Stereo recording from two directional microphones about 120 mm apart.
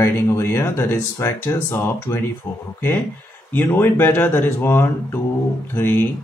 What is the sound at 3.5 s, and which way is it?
Speech, 20° left (ahead or behind).